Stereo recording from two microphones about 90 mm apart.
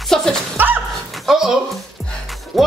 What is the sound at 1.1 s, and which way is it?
Music, centre (ahead or behind).